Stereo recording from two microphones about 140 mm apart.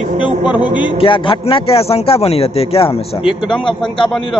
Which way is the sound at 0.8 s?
35° left (ahead or behind).